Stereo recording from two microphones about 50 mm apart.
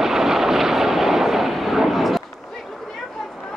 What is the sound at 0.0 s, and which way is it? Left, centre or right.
Vehicle, centre.